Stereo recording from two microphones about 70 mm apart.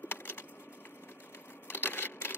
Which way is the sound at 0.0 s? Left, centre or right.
Left.